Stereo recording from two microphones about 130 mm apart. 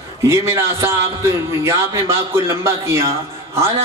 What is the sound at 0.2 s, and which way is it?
A man's voice, 20° right (ahead or behind).